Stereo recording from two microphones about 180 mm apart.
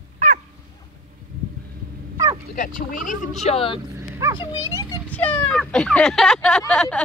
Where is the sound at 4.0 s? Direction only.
15° right (ahead or behind).